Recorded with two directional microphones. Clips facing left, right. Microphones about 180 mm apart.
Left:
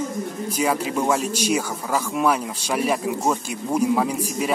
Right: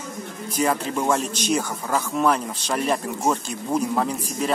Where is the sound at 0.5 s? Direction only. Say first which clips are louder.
Even; 10° left (ahead or behind).